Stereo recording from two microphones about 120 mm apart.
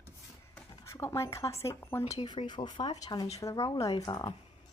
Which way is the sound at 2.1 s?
40° left (ahead or behind).